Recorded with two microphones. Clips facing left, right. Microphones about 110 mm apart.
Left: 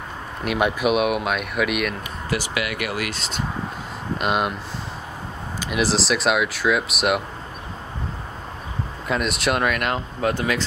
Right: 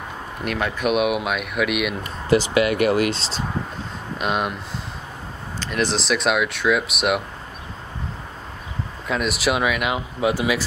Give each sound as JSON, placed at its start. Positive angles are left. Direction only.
{"t": 0.6, "sound": "speech", "side_deg": 15}
{"t": 0.8, "sound": "speech", "side_deg": 0}
{"t": 2.2, "sound": "speech", "side_deg": -25}
{"t": 4.2, "sound": "speech", "side_deg": 0}
{"t": 5.6, "sound": "speech", "side_deg": 5}
{"t": 9.0, "sound": "speech", "side_deg": 0}